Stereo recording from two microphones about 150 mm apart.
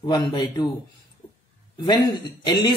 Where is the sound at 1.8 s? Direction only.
30° left (ahead or behind).